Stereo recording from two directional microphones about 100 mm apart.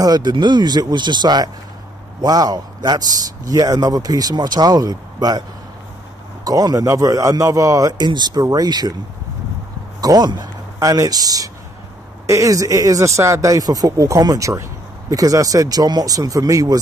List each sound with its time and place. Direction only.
0.0 s speech: 45° right (ahead or behind)
6.4 s speech: 40° right (ahead or behind)
9.9 s speech: 40° right (ahead or behind)